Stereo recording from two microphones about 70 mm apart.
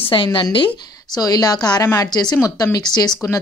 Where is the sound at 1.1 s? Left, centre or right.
Left.